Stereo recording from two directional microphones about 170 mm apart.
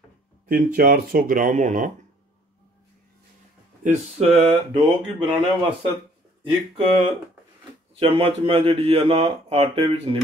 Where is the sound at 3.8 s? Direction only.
45° right (ahead or behind); by 5.5 s 25° right (ahead or behind).